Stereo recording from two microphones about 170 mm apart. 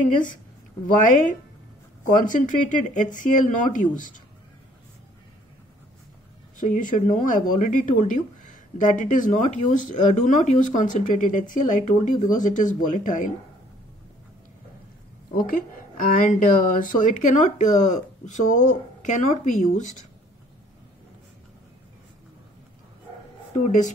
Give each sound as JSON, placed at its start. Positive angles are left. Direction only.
{"t": 0.0, "sound": "speech", "side_deg": 50}
{"t": 2.2, "sound": "speech", "side_deg": 50}
{"t": 6.6, "sound": "speech", "side_deg": 50}
{"t": 15.3, "sound": "speech", "side_deg": 55}